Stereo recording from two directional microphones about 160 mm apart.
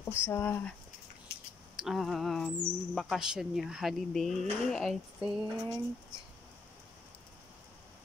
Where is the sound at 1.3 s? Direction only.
90° left.